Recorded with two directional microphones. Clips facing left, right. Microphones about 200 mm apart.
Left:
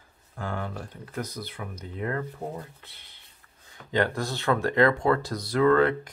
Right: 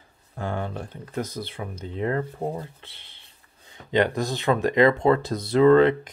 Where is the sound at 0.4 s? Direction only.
25° right (ahead or behind).